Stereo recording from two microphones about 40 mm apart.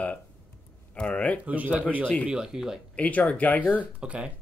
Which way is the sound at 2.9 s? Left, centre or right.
Left.